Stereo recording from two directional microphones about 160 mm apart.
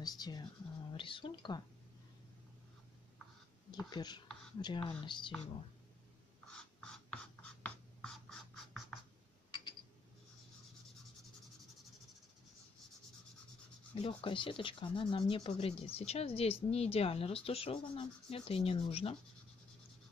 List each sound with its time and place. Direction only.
0.0 s speech: 25° left (ahead or behind)
3.7 s speech: 25° left (ahead or behind)
6.4 s a sound: 5° left (ahead or behind)
7.6 s writing: 5° left (ahead or behind)
13.9 s speech: 35° left (ahead or behind)